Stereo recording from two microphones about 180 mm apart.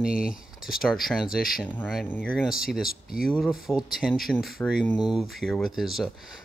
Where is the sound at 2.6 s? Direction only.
Centre (ahead or behind).